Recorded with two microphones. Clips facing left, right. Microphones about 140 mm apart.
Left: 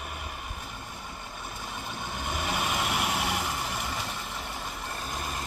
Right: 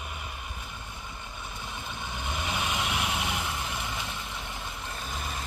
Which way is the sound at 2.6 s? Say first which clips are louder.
Left 1 dB; 45° left (ahead or behind).